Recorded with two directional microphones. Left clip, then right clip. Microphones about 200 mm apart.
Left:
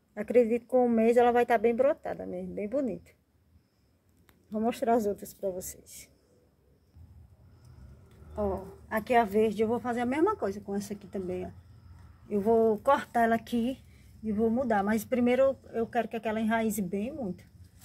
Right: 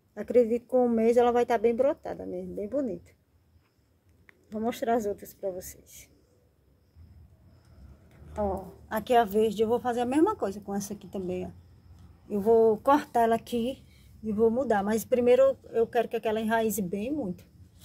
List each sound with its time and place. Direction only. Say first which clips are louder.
0.1 s speech: right 1 dB; 5° right (ahead or behind)
4.5 s speech: left 1 dB; 5° left (ahead or behind)
8.4 s speech: right 2 dB; 15° right (ahead or behind)